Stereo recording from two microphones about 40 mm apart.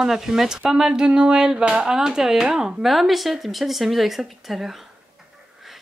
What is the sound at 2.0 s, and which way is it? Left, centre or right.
Speech, centre.